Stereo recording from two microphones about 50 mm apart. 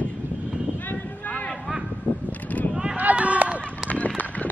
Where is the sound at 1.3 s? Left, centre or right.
Left.